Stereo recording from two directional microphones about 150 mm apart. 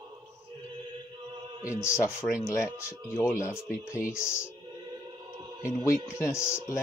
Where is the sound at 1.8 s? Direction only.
20° left (ahead or behind).